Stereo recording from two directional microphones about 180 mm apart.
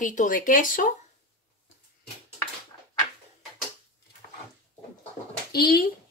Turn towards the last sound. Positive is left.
turn(degrees=55)  # may be behind; listen again after turning